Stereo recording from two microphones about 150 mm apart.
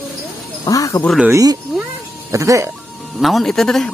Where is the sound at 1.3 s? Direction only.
20° right (ahead or behind).